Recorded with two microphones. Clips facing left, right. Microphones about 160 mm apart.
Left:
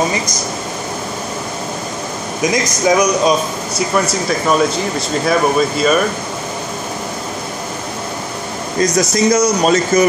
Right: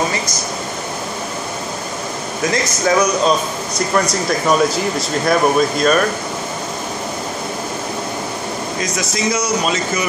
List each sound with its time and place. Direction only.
2.4 s a man's voice: 15° left (ahead or behind)
8.8 s speech: 40° left (ahead or behind)